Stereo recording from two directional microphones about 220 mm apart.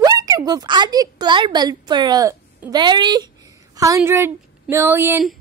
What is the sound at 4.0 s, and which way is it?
Speech, 10° right (ahead or behind).